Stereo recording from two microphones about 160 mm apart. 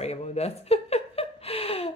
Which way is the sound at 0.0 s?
40° left (ahead or behind).